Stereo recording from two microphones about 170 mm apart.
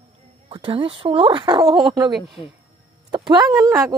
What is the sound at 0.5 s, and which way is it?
Speech, 30° right (ahead or behind).